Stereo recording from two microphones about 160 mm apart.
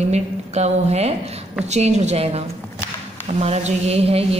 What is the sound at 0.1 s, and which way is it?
A woman's voice, 40° right (ahead or behind).